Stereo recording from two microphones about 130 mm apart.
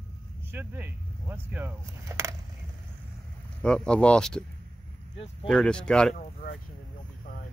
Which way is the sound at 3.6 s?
5° left (ahead or behind).